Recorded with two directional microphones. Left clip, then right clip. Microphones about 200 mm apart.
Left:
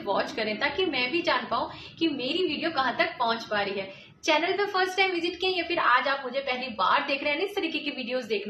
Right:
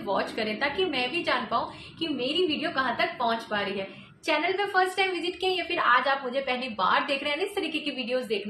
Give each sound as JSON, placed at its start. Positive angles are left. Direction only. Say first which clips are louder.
{"t": 0.1, "sound": "a woman's voice", "louder": "left 1 dB", "side_deg": 5}